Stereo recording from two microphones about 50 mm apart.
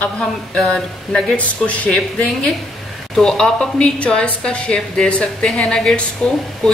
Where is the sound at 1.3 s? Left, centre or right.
Left.